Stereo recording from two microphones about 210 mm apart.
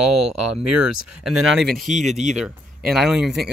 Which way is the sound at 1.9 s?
35° right (ahead or behind).